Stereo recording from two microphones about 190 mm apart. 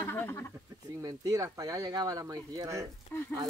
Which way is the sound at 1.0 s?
20° right (ahead or behind).